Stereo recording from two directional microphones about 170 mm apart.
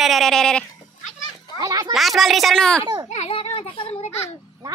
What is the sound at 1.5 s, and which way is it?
Speech, 20° right (ahead or behind).